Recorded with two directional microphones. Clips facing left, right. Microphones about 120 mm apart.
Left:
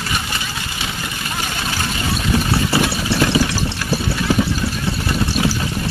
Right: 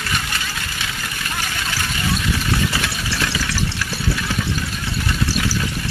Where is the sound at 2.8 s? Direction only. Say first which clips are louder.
Left 7 dB; 25° left (ahead or behind).